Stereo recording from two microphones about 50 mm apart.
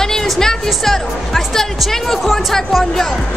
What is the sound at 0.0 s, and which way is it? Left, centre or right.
Music, centre.